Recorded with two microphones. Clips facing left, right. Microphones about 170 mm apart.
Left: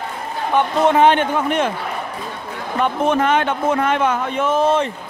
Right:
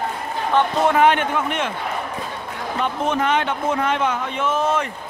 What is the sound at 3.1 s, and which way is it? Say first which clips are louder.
A man's voice: left 3 dB; 50° left (ahead or behind).